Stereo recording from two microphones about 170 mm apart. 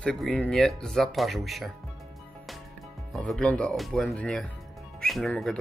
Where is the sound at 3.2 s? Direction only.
5° left (ahead or behind).